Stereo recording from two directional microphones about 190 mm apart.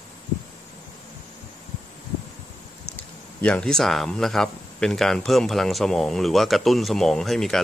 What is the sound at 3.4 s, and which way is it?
Speech, 5° left (ahead or behind).